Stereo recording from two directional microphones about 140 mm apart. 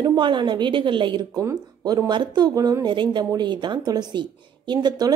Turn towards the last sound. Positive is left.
turn(degrees=-30)  # may be behind; listen again after turning